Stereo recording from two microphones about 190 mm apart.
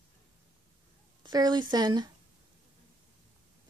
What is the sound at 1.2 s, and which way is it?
Speech, 20° right (ahead or behind).